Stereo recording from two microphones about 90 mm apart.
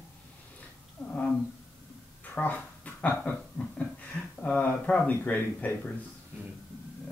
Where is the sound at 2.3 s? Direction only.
15° left (ahead or behind).